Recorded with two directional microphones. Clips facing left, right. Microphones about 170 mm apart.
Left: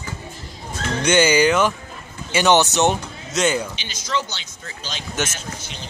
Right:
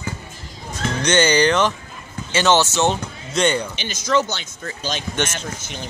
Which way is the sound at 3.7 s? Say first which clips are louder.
Right 6 dB; 50° right (ahead or behind).